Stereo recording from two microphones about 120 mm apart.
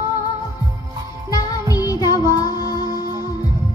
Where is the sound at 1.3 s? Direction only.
30° left (ahead or behind).